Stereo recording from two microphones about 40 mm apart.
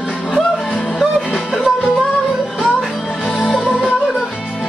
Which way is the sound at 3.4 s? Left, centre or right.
Centre.